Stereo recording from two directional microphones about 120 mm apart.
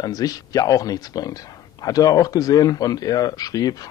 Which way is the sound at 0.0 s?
30° left (ahead or behind).